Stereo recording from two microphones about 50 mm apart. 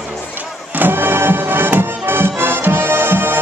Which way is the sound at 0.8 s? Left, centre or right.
Right.